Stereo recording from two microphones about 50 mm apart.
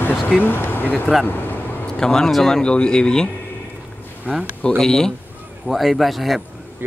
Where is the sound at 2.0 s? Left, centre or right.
Centre.